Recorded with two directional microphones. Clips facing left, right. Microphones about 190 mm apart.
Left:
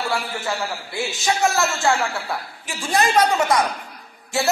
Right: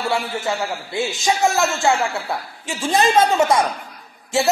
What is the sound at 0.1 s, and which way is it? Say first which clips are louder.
A man's voice: right 3 dB; 20° right (ahead or behind).